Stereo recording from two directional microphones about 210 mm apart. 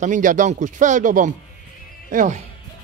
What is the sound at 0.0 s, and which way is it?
Speech, 40° right (ahead or behind).